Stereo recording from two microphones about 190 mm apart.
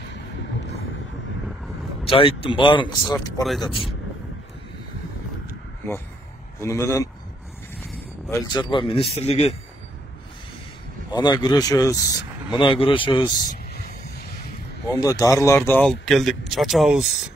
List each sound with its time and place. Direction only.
2.0 s speech: 30° left (ahead or behind)
6.6 s speech: 15° left (ahead or behind)
8.3 s speech: 20° left (ahead or behind)
11.1 s speech: 20° left (ahead or behind)
13.4 s a sound: 45° left (ahead or behind)
15.0 s speech: 20° left (ahead or behind); by 17.0 s centre (ahead or behind)